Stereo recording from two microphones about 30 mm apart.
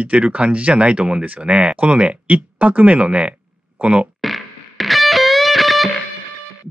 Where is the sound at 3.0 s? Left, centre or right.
Right.